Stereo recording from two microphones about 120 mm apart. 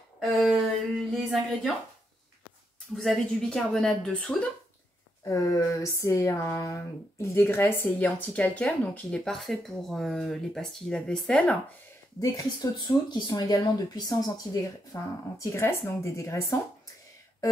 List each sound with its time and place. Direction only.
0.2 s a sound: centre (ahead or behind)
1.1 s a woman's voice: centre (ahead or behind)
3.0 s a woman's voice: 5° left (ahead or behind)
5.2 s speech: 25° left (ahead or behind); by 11.5 s 10° left (ahead or behind)
12.2 s speech: 30° left (ahead or behind)